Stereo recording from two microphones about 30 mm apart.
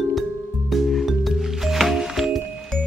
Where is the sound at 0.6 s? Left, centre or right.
Centre.